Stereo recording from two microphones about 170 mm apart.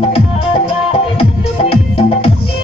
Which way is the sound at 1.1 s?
35° left (ahead or behind).